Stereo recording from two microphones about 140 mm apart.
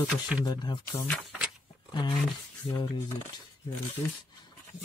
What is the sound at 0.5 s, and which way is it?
Speech, 30° left (ahead or behind).